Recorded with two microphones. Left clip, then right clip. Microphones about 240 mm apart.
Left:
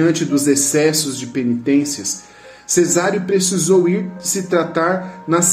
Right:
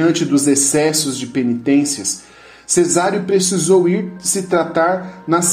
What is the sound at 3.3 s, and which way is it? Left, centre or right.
Speech, right.